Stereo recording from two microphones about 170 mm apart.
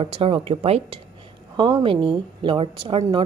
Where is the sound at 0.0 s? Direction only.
35° right (ahead or behind).